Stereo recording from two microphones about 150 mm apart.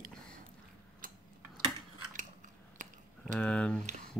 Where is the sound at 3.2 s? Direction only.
5° left (ahead or behind).